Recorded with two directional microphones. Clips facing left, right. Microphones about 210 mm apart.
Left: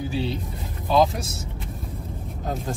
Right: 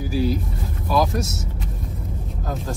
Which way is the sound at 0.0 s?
25° left (ahead or behind).